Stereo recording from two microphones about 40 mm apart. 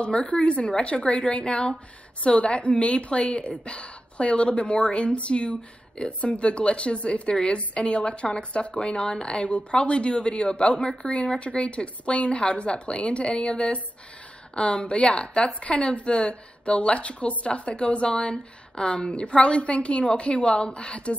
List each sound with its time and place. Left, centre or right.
0.3 s a woman's voice: left